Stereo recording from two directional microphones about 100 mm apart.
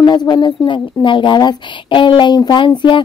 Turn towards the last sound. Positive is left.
turn(degrees=55)  # may be behind; listen again after turning